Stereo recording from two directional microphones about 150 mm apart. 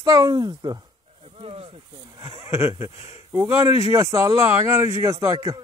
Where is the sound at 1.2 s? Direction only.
40° right (ahead or behind).